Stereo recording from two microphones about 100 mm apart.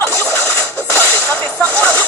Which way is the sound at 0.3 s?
20° left (ahead or behind).